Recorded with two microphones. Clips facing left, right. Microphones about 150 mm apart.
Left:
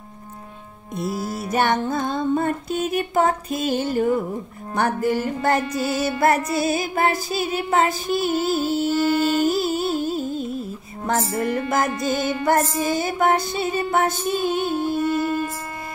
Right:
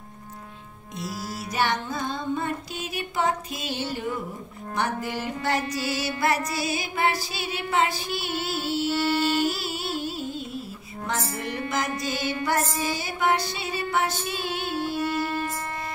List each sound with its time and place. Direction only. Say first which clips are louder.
0.9 s music: left 7 dB; 50° left (ahead or behind)